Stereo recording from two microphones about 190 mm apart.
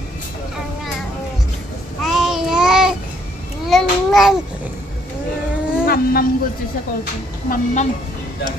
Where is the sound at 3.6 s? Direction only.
Centre (ahead or behind).